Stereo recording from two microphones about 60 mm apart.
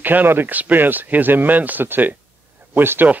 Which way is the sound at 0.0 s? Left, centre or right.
Right.